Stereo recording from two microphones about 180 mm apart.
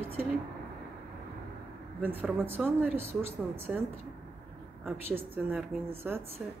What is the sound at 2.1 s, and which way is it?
Speech, 10° right (ahead or behind).